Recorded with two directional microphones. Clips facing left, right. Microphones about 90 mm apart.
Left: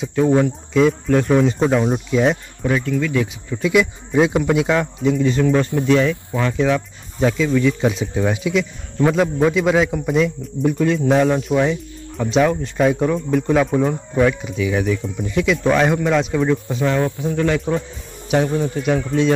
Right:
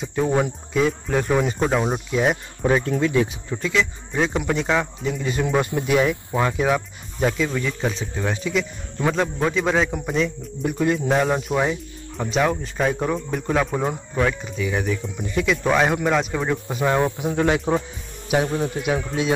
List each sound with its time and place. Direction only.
0.1 s speech: 5° right (ahead or behind)
2.6 s speech: 35° right (ahead or behind)
3.5 s speech: 10° left (ahead or behind); by 6.5 s 15° right (ahead or behind)
6.5 s speech: 5° right (ahead or behind); by 17.8 s 25° right (ahead or behind)
18.3 s speech: 5° right (ahead or behind)